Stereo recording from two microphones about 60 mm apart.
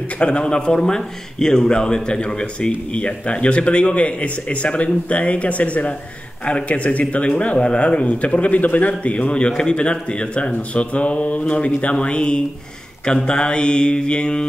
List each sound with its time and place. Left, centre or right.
0.2 s speech: centre